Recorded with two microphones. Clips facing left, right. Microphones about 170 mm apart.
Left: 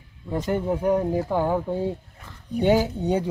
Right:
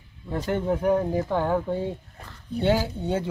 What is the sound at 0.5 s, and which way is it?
Speech, 10° left (ahead or behind).